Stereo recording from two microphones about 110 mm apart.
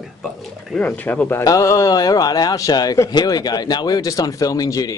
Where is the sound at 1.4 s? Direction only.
30° left (ahead or behind).